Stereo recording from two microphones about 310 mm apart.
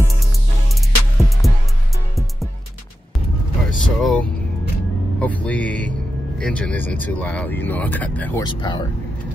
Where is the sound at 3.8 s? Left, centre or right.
Centre.